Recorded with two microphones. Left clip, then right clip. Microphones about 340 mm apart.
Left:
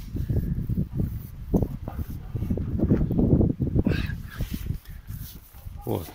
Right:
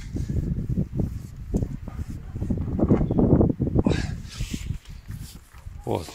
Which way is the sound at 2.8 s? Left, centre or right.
Right.